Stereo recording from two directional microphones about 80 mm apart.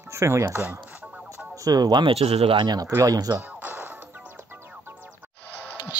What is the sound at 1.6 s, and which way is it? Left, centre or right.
Speech, right.